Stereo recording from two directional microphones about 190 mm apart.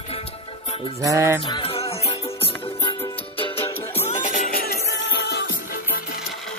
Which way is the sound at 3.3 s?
30° left (ahead or behind).